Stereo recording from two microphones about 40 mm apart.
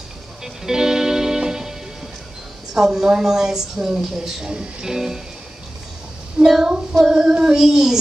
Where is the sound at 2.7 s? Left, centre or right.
Centre.